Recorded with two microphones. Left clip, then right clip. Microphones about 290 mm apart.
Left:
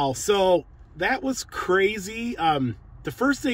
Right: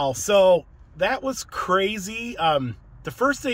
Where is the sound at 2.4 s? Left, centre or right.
Right.